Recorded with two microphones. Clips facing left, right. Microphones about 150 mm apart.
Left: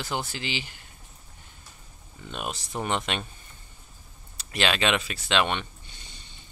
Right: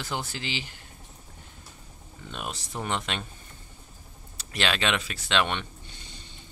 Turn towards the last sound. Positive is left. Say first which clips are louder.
# left 1 dB
turn(degrees=10)  # may be behind; listen again after turning